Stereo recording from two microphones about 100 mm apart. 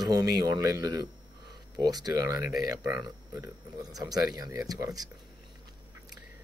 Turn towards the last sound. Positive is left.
turn(degrees=-40)  # may be behind; listen again after turning